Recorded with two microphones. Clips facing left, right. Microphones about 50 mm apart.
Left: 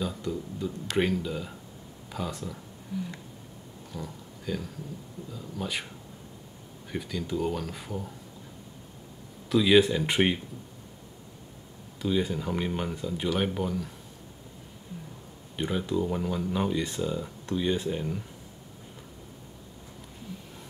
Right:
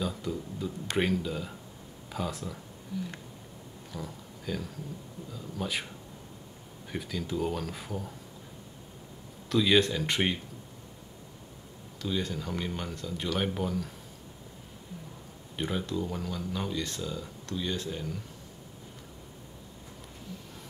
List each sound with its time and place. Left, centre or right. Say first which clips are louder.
0.0 s speech: left 1 dB; centre
3.9 s a sound: left 1 dB; centre
5.3 s speech: even; centre
6.9 s speech: left 2 dB; centre
9.5 s speech: left 4 dB; centre
12.0 s speech: left 5 dB; centre
15.5 s speech: left 2 dB; centre
15.8 s speech: left 5 dB; centre